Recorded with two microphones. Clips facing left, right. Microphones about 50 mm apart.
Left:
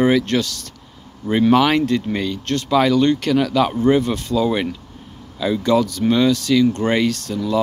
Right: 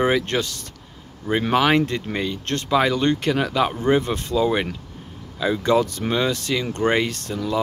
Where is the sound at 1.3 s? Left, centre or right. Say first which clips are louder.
Left 4 dB; centre.